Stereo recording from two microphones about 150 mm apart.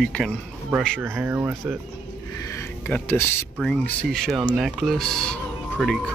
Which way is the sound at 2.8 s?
15° left (ahead or behind).